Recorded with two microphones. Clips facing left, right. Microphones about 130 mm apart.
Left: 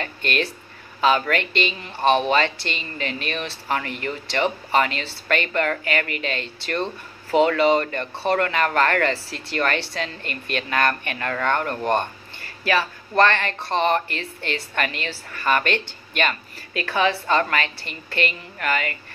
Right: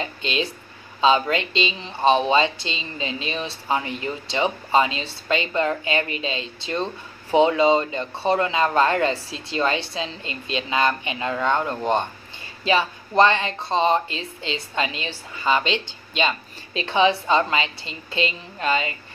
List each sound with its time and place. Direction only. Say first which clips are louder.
1.0 s a woman's voice: right 1 dB; 20° right (ahead or behind)
10.2 s speech: left 1 dB; 60° left (ahead or behind)
10.5 s speech: right 1 dB; 15° right (ahead or behind)
15.6 s speech: left 1 dB; 55° left (ahead or behind)
16.2 s a woman's voice: right 1 dB; 20° right (ahead or behind)